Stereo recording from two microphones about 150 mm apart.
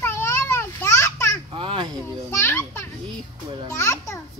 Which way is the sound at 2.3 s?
15° left (ahead or behind).